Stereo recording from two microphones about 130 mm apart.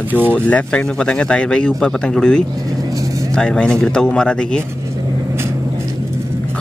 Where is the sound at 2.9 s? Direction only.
25° right (ahead or behind).